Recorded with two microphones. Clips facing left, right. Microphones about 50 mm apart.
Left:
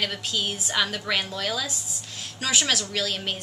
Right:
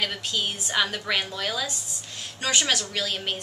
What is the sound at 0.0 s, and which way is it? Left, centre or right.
A woman's voice, centre.